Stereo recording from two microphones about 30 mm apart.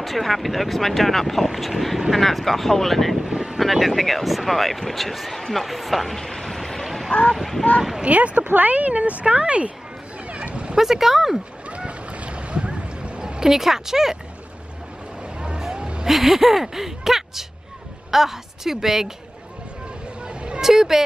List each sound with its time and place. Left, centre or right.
0.0 s speech: centre
3.2 s vehicle: centre
3.7 s speech: centre
5.4 s a sound: centre
7.3 s speech: centre
8.1 s speech: right
9.2 s speech: right
10.2 s a sound: right
10.8 s speech: centre
11.7 s a sound: right
13.4 s speech: centre
16.1 s speech: centre
20.2 s vehicle: right
20.6 s speech: centre